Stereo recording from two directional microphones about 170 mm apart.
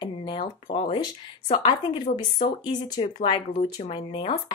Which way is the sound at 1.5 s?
25° left (ahead or behind).